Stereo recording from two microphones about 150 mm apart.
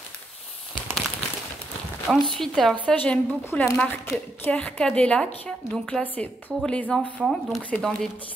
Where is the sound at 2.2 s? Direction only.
Centre (ahead or behind).